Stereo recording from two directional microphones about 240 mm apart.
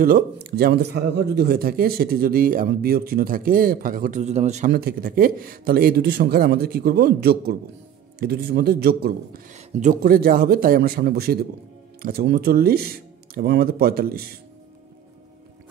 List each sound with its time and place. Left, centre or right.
0.0 s speech: right